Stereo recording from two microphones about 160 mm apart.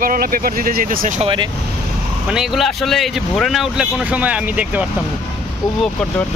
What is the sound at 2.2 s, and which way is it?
Speech, 5° right (ahead or behind).